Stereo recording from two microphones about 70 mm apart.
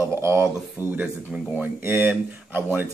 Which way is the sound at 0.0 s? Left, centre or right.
Right.